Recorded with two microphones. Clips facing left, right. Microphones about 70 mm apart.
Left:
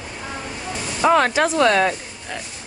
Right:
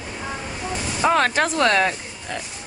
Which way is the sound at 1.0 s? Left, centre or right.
Left.